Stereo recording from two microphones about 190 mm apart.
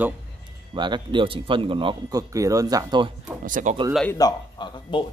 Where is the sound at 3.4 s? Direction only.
45° right (ahead or behind).